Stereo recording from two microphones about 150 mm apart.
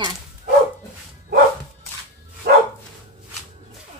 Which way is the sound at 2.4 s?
90° right.